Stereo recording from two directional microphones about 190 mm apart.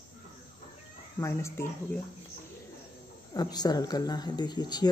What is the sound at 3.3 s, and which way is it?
Speech, 20° left (ahead or behind).